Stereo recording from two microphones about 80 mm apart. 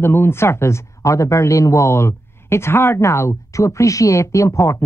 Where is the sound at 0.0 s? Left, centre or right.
Left.